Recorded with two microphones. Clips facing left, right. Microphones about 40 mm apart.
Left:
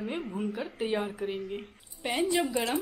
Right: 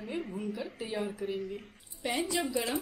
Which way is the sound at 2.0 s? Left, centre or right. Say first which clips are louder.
Left 1 dB; left.